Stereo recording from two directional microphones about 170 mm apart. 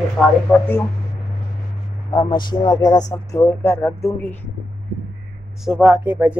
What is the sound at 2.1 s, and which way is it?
Speech, 25° left (ahead or behind).